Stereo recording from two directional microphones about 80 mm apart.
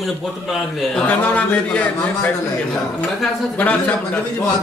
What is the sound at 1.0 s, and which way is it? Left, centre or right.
Speech, centre.